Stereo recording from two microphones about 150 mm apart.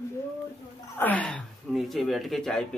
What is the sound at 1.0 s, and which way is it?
A man's voice, 10° left (ahead or behind).